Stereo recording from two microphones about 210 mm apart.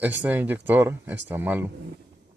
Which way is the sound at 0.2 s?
10° right (ahead or behind).